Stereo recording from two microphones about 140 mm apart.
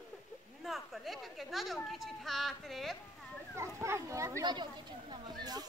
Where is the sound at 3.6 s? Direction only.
20° right (ahead or behind).